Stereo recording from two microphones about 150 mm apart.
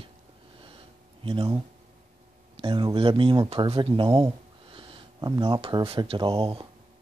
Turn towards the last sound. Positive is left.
turn(degrees=-35)  # may be behind; listen again after turning